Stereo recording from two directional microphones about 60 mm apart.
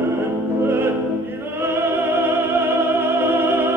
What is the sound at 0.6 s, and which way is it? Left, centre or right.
Music, right.